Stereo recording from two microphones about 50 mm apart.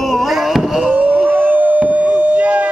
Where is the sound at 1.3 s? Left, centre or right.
Right.